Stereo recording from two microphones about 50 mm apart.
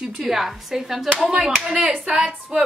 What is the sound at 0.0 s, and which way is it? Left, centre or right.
A woman's voice, centre.